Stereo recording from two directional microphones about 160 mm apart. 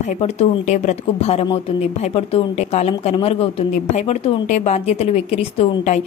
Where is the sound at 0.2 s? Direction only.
45° left (ahead or behind).